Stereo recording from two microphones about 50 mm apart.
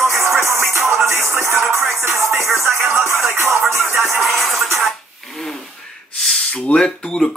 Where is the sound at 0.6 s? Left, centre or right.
Right.